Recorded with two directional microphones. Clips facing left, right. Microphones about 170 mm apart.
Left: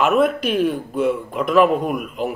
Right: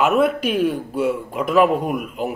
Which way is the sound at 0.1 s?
5° right (ahead or behind).